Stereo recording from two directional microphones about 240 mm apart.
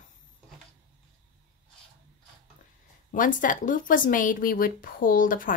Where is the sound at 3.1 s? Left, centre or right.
Left.